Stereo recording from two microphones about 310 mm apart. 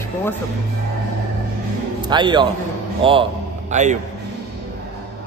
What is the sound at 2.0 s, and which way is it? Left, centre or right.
A man's voice, centre.